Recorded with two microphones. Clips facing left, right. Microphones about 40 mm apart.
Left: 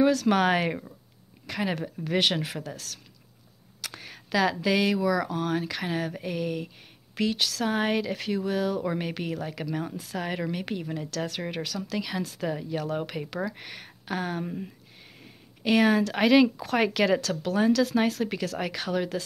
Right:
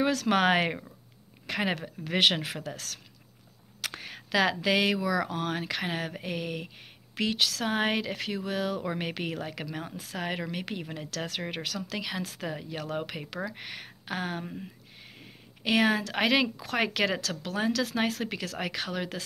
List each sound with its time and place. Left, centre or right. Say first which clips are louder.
0.0 s speech: left 3 dB; centre
3.9 s a sound: left 1 dB; centre
4.6 s speech: left 2 dB; centre
5.3 s speech: left 3 dB; right
11.9 s speech: left 3 dB; centre
13.6 s a sound: right 1 dB; centre
14.4 s speech: left 5 dB; centre
15.1 s a sound: even; centre
16.1 s speech: left 5 dB; centre